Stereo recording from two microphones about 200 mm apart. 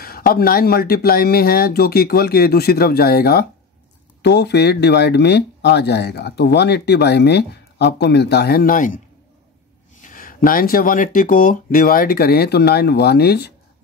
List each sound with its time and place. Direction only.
0.0 s speech: 50° left (ahead or behind)
10.0 s speech: 45° left (ahead or behind)